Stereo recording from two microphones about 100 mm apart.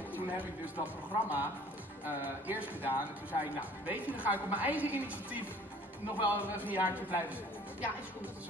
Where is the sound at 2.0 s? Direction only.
20° right (ahead or behind).